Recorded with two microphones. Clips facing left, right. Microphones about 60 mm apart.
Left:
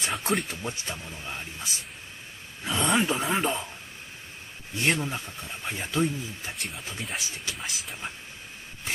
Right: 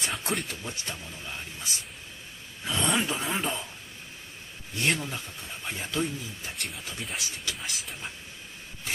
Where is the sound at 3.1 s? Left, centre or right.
Left.